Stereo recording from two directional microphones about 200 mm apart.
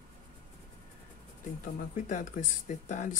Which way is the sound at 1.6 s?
40° left (ahead or behind).